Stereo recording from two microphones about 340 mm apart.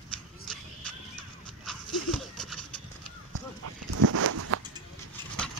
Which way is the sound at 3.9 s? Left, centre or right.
Right.